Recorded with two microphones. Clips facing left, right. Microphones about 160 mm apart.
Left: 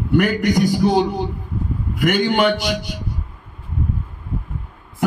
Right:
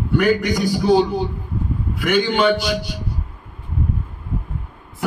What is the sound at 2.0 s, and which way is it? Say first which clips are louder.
Speech: left 1 dB; 50° left (ahead or behind).